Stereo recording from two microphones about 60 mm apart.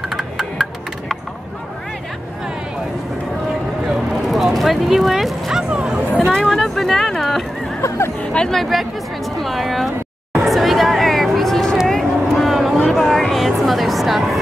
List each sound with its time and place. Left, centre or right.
0.1 s music: centre
4.1 s a sound: centre
4.6 s speech: centre
6.3 s speech: centre
8.2 s speech: centre
8.5 s speech: centre
10.3 s a sound: centre
11.9 s vehicle: centre
12.8 s music: centre